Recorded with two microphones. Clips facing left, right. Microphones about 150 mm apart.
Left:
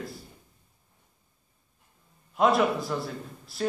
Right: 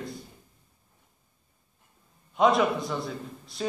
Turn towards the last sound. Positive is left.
turn(degrees=5)  # may be behind; listen again after turning